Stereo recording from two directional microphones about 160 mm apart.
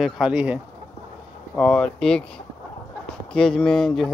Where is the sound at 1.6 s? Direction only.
5° left (ahead or behind).